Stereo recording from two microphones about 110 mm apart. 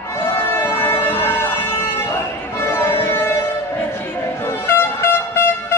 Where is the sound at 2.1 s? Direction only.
20° left (ahead or behind).